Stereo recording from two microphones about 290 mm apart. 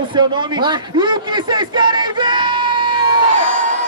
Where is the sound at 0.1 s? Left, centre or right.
Centre.